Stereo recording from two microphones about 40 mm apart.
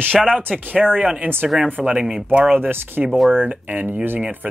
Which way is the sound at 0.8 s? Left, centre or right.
Centre.